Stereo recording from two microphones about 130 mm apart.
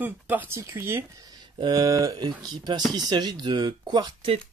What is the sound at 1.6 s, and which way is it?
Speech, 30° right (ahead or behind).